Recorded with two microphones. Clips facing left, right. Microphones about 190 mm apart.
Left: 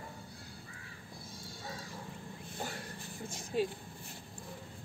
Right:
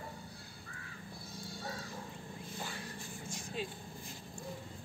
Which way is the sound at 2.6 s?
45° left (ahead or behind).